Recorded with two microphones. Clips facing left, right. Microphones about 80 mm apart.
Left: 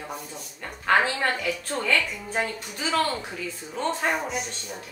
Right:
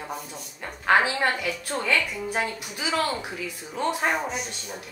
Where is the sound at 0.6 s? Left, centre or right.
Centre.